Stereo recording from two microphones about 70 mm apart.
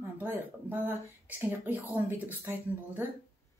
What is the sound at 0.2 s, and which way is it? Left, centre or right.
Speech, right.